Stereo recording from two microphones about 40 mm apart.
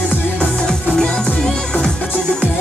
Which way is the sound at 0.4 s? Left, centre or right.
Centre.